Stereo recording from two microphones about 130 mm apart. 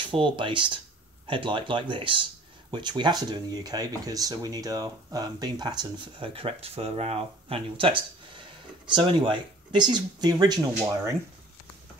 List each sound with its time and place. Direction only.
0.1 s speech: 40° right (ahead or behind)